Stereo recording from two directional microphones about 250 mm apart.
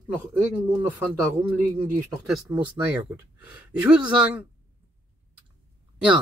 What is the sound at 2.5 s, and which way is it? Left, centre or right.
Speech, centre.